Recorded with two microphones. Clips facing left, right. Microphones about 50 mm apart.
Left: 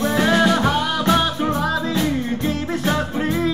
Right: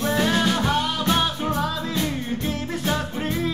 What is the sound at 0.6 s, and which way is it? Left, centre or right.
Music, left.